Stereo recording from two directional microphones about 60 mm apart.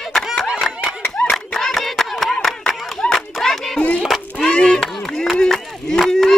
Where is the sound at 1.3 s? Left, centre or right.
Centre.